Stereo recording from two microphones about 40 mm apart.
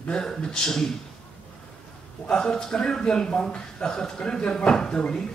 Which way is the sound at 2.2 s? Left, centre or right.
Centre.